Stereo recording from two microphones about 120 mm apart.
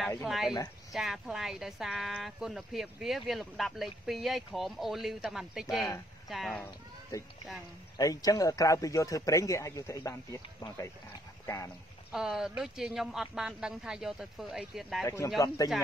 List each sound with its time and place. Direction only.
0.2 s speech: centre (ahead or behind)
6.6 s speech: 25° left (ahead or behind)
12.1 s speech: 5° right (ahead or behind)
15.0 s speech: 25° left (ahead or behind)